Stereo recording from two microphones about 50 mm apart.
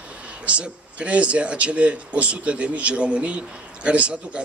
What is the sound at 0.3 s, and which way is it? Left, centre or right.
Speech, right.